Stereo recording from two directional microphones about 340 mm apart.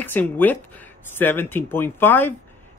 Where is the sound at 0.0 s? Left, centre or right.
Centre.